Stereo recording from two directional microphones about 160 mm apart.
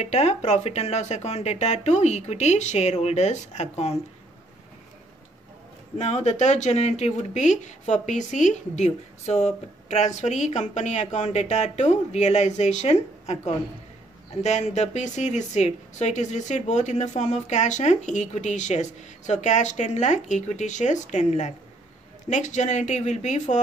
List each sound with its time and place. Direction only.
0.0 s speech: 45° left (ahead or behind)
5.9 s speech: 45° left (ahead or behind)
14.4 s speech: 45° left (ahead or behind)